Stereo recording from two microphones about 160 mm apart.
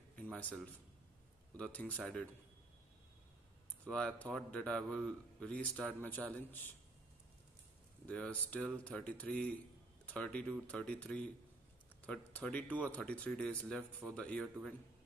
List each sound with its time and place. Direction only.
0.1 s a sound: 10° left (ahead or behind)
1.6 s a man's voice: 10° left (ahead or behind)
3.9 s a man's voice: 5° left (ahead or behind)
8.1 s a man's voice: 10° left (ahead or behind)